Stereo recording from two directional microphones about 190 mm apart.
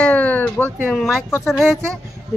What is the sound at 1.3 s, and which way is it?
Speech, 15° left (ahead or behind).